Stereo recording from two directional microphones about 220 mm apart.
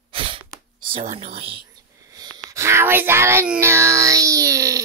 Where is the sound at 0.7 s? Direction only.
20° right (ahead or behind).